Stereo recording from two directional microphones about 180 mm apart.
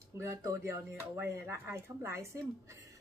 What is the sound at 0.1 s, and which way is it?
A woman's voice, 15° right (ahead or behind).